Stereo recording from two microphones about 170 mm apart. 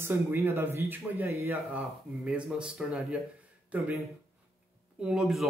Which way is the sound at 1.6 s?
5° right (ahead or behind).